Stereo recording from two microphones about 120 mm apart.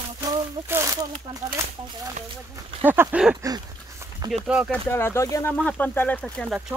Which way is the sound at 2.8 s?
15° right (ahead or behind).